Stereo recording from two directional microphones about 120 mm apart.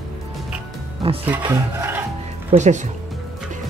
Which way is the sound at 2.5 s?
70° right (ahead or behind).